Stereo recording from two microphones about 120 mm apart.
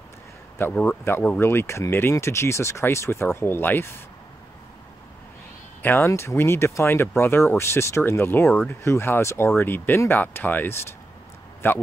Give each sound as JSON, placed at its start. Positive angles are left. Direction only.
{"t": 0.6, "sound": "speech", "side_deg": 15}
{"t": 5.8, "sound": "speech", "side_deg": 20}